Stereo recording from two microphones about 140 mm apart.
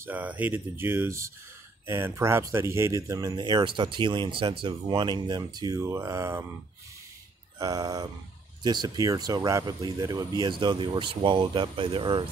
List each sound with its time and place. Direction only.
0.0 s speech: 10° right (ahead or behind)
7.5 s speech: 25° right (ahead or behind)